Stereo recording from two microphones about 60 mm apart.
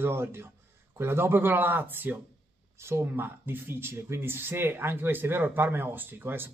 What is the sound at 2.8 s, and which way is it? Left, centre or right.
Speech, right.